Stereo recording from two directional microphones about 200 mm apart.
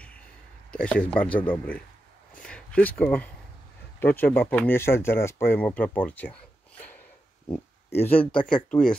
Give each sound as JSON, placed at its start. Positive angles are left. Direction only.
{"t": 0.7, "sound": "speech", "side_deg": 5}
{"t": 2.3, "sound": "a sound", "side_deg": 5}
{"t": 4.2, "sound": "speech", "side_deg": 10}
{"t": 7.5, "sound": "speech", "side_deg": 10}